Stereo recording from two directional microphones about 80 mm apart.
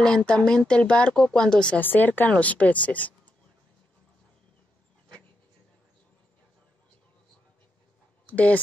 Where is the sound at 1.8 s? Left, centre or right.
Left.